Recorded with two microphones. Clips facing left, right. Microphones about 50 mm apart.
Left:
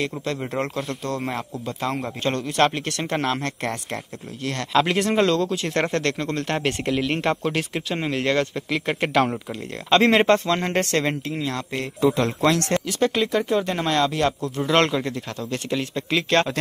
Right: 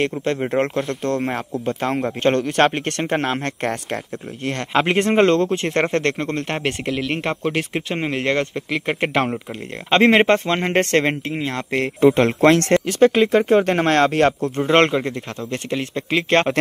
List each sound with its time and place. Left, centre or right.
0.2 s speech: right
5.7 s speech: right
6.9 s speech: centre; by 14.5 s right
14.6 s speech: right